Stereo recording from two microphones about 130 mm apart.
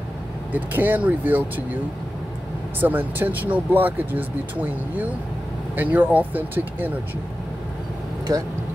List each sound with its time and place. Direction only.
0.5 s speech: 15° right (ahead or behind)
2.8 s speech: 15° right (ahead or behind)
8.3 s speech: 25° right (ahead or behind)